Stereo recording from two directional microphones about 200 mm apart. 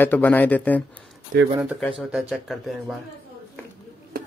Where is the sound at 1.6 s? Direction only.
5° right (ahead or behind).